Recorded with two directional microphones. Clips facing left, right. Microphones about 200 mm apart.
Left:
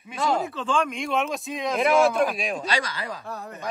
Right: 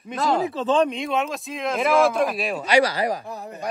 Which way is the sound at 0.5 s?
35° right (ahead or behind).